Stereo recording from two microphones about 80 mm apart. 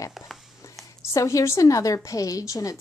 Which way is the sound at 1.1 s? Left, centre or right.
Left.